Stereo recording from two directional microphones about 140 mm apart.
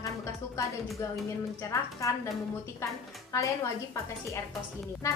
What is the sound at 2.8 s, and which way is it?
Speech, 20° left (ahead or behind).